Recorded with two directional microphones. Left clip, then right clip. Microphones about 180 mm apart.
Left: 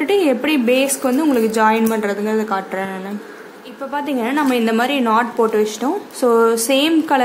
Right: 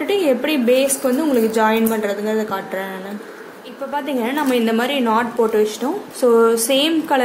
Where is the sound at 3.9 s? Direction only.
20° left (ahead or behind).